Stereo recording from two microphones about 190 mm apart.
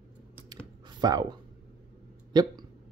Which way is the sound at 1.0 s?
20° right (ahead or behind).